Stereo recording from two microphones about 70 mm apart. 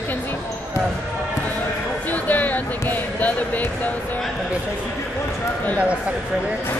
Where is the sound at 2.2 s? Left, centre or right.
Left.